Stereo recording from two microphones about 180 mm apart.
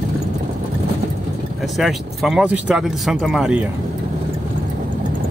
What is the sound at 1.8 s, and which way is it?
Speech, centre (ahead or behind).